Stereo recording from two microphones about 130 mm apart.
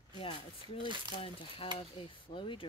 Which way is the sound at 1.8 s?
40° left (ahead or behind).